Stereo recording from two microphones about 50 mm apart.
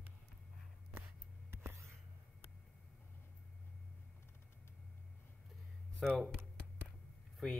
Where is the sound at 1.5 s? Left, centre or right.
Right.